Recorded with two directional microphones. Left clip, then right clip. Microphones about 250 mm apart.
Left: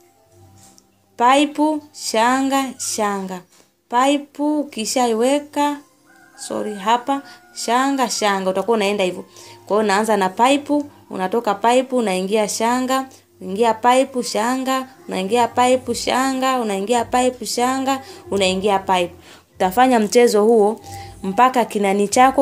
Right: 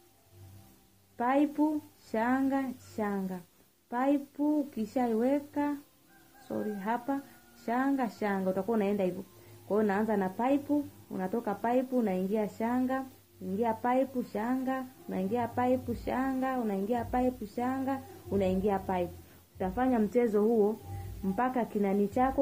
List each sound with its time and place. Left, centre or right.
1.1 s a woman's voice: centre